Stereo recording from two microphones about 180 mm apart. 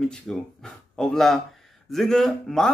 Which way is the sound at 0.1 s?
5° left (ahead or behind).